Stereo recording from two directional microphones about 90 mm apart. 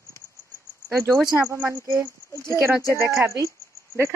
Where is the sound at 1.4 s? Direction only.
25° right (ahead or behind).